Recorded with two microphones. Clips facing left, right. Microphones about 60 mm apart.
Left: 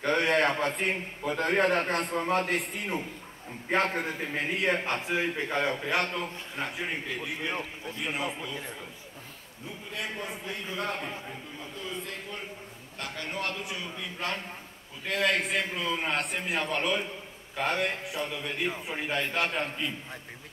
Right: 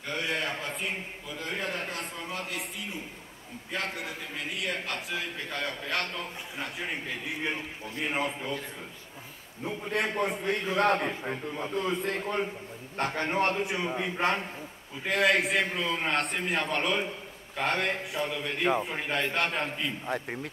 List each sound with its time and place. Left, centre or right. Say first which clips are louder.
0.0 s a man's voice: left 7 dB; left; by 6.2 s centre
6.5 s a man's voice: left 2 dB; centre
8.1 s a man's voice: right 3 dB; right
9.8 s a man's voice: right 7 dB; right
15.2 s a man's voice: right 2 dB; centre